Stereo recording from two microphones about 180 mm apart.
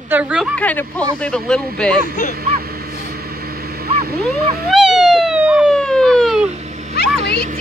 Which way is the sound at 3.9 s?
60° right (ahead or behind).